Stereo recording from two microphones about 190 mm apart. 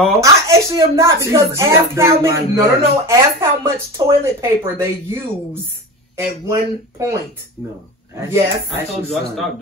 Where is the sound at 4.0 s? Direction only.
20° right (ahead or behind).